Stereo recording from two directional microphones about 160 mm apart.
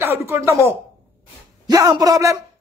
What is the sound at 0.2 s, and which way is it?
A woman's voice, 15° right (ahead or behind).